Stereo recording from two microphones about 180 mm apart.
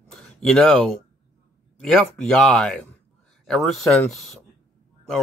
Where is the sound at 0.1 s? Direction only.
5° left (ahead or behind).